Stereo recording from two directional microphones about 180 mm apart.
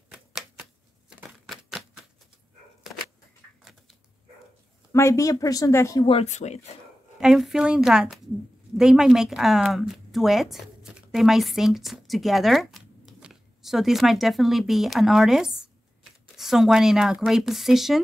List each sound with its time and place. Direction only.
0.1 s typewriter: centre (ahead or behind)
1.4 s a sound: 5° right (ahead or behind)
4.9 s speech: 15° left (ahead or behind)
6.0 s speech: 35° left (ahead or behind)
7.2 s a woman's voice: centre (ahead or behind)